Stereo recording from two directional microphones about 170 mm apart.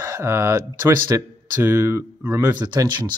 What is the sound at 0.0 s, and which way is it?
A man's voice, 15° right (ahead or behind).